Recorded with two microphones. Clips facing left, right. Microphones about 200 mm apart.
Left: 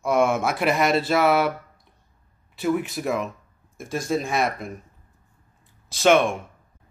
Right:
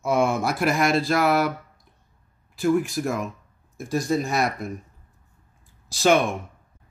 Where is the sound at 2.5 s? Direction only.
Centre (ahead or behind).